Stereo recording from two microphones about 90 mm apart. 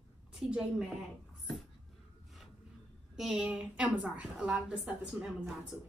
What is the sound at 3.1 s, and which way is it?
A woman's voice, 5° right (ahead or behind).